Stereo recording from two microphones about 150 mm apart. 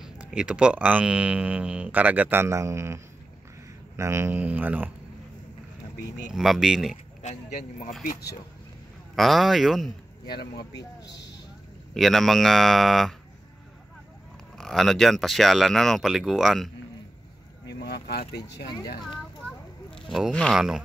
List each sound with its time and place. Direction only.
0.0 s speech: 5° right (ahead or behind)
6.3 s speech: centre (ahead or behind)
7.2 s speech: 50° left (ahead or behind)
8.0 s speech: 70° left (ahead or behind)
9.1 s speech: centre (ahead or behind)
10.2 s speech: 90° left
11.9 s speech: centre (ahead or behind)
14.6 s speech: centre (ahead or behind)
17.8 s a sound: 90° left
20.1 s speech: centre (ahead or behind)